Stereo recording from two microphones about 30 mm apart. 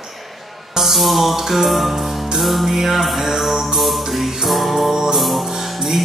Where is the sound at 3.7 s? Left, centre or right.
Centre.